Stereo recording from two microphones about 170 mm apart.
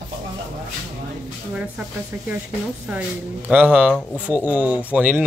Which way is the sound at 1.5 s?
10° right (ahead or behind).